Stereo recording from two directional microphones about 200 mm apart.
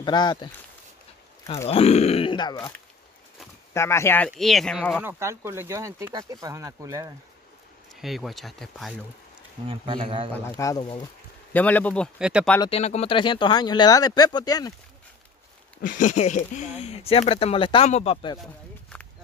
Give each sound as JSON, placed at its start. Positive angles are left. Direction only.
{"t": 0.0, "sound": "speech", "side_deg": 20}
{"t": 1.7, "sound": "speech", "side_deg": 30}
{"t": 3.7, "sound": "speech", "side_deg": 15}
{"t": 5.2, "sound": "speech", "side_deg": -15}
{"t": 7.9, "sound": "speech", "side_deg": 0}
{"t": 9.7, "sound": "speech", "side_deg": -25}
{"t": 10.6, "sound": "speech", "side_deg": 20}
{"t": 11.5, "sound": "speech", "side_deg": 10}
{"t": 12.6, "sound": "speech", "side_deg": 30}
{"t": 15.8, "sound": "speech", "side_deg": 40}